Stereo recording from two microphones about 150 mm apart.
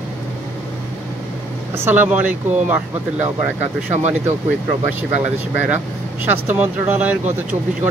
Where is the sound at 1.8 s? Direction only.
10° right (ahead or behind).